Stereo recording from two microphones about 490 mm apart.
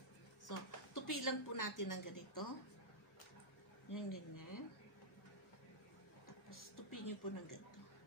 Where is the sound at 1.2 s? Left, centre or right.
Left.